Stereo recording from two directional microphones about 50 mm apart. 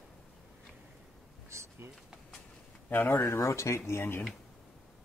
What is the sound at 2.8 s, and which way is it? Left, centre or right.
Speech, left.